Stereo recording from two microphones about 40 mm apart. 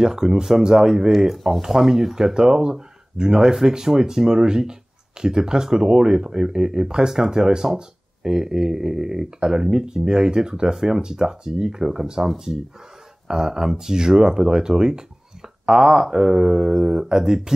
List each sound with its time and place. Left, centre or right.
0.0 s speech: centre
1.3 s speech: centre